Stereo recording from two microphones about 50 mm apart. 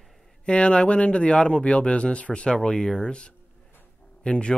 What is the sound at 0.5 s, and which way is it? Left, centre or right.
Speech, left.